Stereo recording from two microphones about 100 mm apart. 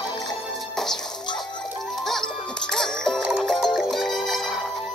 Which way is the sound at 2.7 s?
5° left (ahead or behind).